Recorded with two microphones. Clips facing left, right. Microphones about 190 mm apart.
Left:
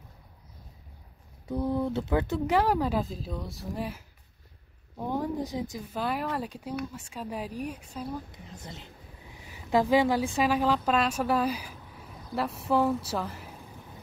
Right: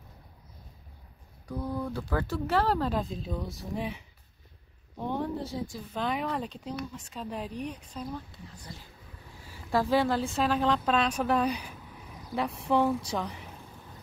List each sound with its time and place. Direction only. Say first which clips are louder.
1.5 s speech: left 5 dB; 25° left (ahead or behind)
5.9 s speech: even; 5° left (ahead or behind)
8.5 s a woman's voice: left 3 dB; 20° left (ahead or behind)
10.6 s speech: left 1 dB; 5° left (ahead or behind)